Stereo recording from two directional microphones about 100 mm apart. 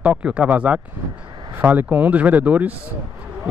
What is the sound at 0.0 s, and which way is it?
Speech, 10° right (ahead or behind).